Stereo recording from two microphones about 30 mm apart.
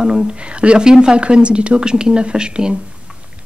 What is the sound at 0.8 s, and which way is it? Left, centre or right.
A woman's voice, right.